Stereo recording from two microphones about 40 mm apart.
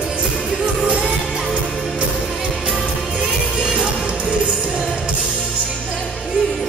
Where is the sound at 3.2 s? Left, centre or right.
Right.